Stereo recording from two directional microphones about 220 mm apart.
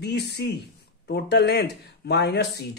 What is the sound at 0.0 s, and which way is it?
Speech, 50° left (ahead or behind).